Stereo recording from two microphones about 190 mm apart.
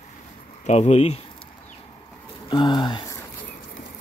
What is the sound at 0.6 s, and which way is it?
Speech, 35° left (ahead or behind).